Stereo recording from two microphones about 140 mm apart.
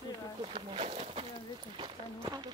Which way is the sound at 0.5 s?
45° right (ahead or behind).